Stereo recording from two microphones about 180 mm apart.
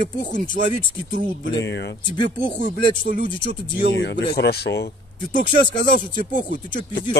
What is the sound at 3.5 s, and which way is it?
Speech, 75° left (ahead or behind).